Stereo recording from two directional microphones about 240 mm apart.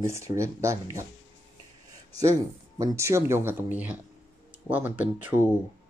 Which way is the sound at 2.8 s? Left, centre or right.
Centre.